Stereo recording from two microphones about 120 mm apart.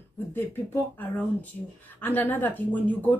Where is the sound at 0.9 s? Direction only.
15° left (ahead or behind).